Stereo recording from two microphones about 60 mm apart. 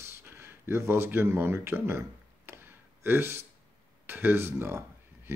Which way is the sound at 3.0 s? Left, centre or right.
Right.